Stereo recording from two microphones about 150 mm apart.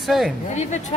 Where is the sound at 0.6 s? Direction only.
50° left (ahead or behind).